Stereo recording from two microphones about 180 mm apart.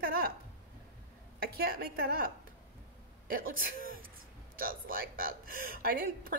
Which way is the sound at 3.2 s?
50° right (ahead or behind).